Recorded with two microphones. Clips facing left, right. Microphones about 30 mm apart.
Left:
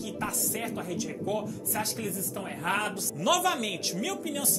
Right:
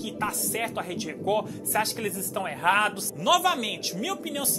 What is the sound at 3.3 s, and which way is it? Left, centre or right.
Speech, centre.